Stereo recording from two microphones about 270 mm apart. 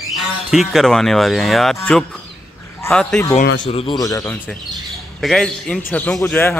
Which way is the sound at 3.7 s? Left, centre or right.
Centre.